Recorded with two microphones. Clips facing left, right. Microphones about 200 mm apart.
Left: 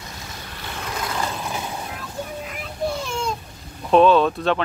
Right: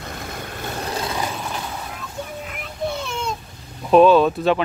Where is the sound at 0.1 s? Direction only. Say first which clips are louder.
Right 6 dB; 55° right (ahead or behind); by 1.1 s 35° right (ahead or behind).